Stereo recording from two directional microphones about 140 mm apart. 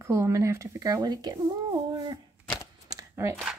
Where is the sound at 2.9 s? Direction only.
25° right (ahead or behind).